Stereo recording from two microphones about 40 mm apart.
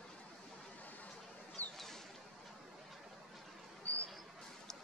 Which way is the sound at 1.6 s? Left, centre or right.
Left.